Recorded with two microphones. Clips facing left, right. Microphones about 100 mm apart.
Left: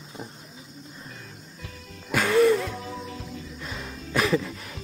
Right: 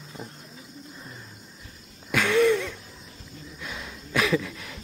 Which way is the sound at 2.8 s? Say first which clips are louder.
Left 12 dB; 90° left.